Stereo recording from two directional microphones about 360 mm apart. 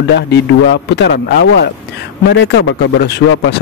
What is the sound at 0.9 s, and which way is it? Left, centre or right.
Speech, left.